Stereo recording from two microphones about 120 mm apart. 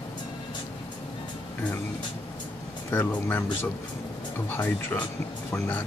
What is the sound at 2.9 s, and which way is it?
Speech, 15° left (ahead or behind).